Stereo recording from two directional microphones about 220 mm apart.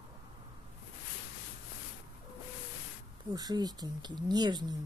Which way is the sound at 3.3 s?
20° right (ahead or behind).